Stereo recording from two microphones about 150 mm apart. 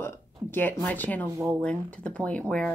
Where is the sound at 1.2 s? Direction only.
20° right (ahead or behind).